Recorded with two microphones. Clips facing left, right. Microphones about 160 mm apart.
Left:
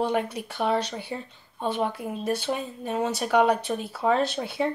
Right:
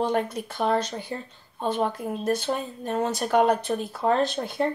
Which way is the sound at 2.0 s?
10° left (ahead or behind).